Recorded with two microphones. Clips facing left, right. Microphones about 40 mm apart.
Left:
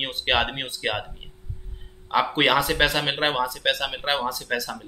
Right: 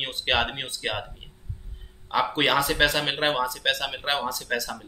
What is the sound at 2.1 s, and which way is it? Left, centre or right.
Speech, centre.